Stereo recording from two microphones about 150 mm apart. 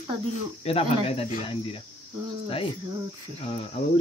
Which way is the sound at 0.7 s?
40° left (ahead or behind).